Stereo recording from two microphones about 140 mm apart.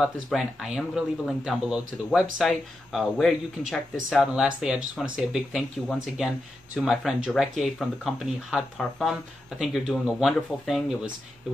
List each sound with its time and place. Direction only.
0.0 s speech: centre (ahead or behind)